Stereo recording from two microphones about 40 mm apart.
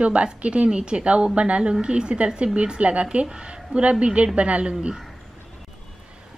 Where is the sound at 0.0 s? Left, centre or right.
Right.